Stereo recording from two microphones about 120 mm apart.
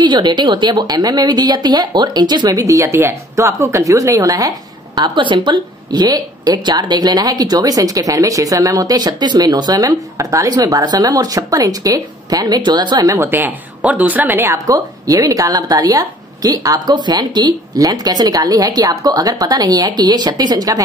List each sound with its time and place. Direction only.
0.0 s a woman's voice: 40° right (ahead or behind)
13.3 s a woman's voice: 15° right (ahead or behind); by 20.8 s 35° right (ahead or behind)